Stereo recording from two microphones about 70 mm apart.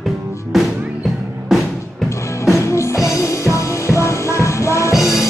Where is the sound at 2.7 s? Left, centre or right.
Left.